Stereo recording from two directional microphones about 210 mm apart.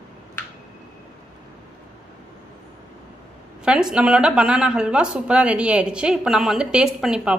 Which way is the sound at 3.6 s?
5° right (ahead or behind).